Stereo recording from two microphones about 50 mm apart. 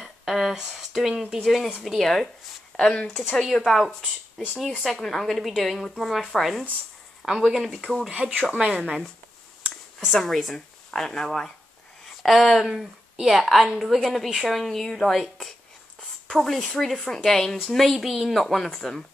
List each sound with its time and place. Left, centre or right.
0.0 s a sound: centre
0.6 s speech: centre
1.7 s speech: centre
2.0 s speech: centre
3.2 s speech: centre
7.2 s speech: centre
8.1 s speech: right
9.9 s speech: centre